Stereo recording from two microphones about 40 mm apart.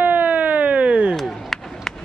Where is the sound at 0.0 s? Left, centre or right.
Right.